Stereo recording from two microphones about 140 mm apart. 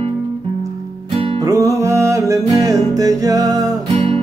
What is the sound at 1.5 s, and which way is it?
Music, 20° right (ahead or behind).